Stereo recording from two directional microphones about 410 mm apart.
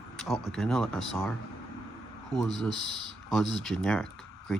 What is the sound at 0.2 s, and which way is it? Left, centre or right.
Speech, centre.